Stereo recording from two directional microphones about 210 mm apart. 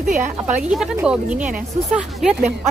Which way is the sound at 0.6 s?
5° right (ahead or behind).